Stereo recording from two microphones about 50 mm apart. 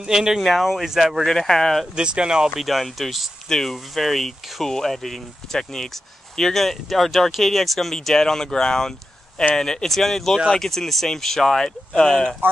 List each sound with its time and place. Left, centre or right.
0.0 s speech: centre
0.4 s speech: centre
1.2 s speech: centre
2.0 s speech: centre
2.5 s speech: centre